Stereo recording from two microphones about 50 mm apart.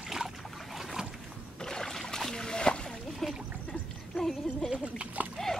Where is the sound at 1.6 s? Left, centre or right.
Centre.